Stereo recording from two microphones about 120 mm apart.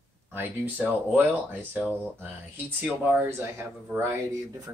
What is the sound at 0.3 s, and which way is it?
Speech, 15° right (ahead or behind).